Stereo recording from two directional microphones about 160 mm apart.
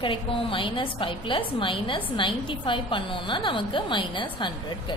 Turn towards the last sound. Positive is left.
turn(degrees=30)  # may be behind; listen again after turning